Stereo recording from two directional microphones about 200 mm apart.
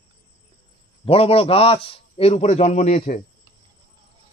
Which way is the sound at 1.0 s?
30° left (ahead or behind).